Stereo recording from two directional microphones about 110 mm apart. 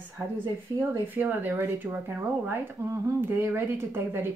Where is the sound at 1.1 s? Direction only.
15° right (ahead or behind).